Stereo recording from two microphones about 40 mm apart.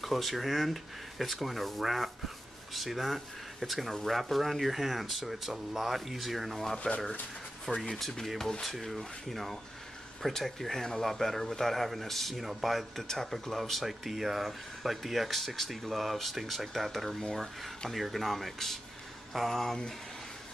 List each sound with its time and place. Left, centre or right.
0.0 s speech: centre
7.7 s speech: left
8.0 s speech: centre
8.6 s speech: centre